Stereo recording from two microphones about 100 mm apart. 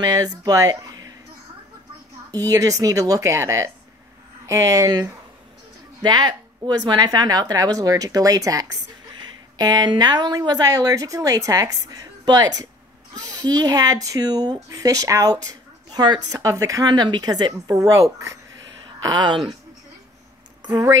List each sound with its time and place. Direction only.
0.0 s speech: 40° right (ahead or behind)
2.3 s speech: 40° right (ahead or behind)
6.0 s speech: 45° right (ahead or behind)
17.7 s speech: 30° right (ahead or behind)
18.9 s a woman's voice: 45° right (ahead or behind)